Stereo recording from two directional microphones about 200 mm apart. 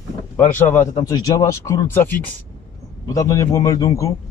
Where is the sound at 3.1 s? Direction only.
15° left (ahead or behind).